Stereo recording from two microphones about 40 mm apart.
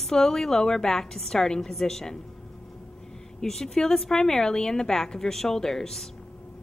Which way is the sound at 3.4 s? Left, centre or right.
Centre.